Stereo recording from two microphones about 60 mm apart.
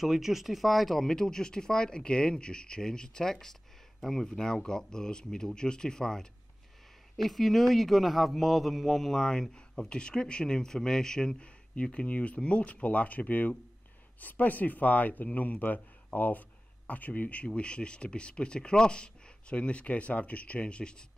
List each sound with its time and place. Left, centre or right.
0.0 s a man's voice: centre